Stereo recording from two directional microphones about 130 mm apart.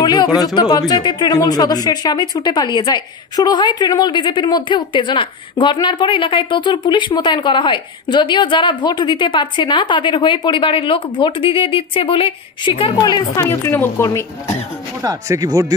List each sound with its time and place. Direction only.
0.0 s speech: 30° left (ahead or behind)
13.0 s speech: 25° left (ahead or behind)
15.0 s speech: 25° right (ahead or behind)